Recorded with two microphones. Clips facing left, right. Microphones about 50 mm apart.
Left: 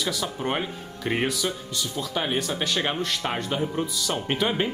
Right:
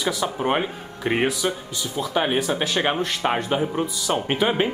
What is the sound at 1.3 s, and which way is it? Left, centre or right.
Speech, centre.